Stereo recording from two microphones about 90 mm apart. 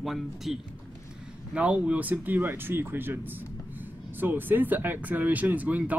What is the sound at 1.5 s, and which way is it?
Speech, 15° right (ahead or behind).